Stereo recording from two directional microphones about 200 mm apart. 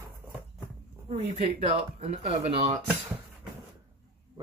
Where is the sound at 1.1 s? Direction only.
35° right (ahead or behind).